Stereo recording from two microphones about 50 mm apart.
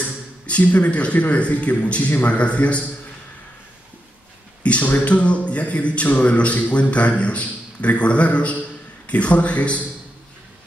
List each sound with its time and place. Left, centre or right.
0.5 s a man's voice: left
2.0 s a man's voice: left
2.3 s a man's voice: left
4.6 s a man's voice: left